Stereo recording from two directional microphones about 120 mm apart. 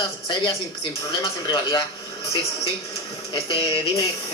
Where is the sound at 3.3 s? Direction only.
50° left (ahead or behind).